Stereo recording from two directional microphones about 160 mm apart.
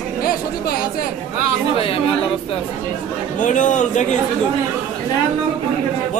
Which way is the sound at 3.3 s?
50° left (ahead or behind).